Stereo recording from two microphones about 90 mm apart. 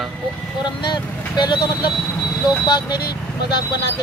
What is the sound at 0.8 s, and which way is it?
Speech, 55° left (ahead or behind).